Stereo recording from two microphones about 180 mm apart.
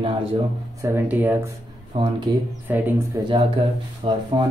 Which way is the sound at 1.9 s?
30° right (ahead or behind).